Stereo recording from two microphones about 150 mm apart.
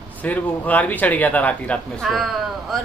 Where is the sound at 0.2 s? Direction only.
10° left (ahead or behind).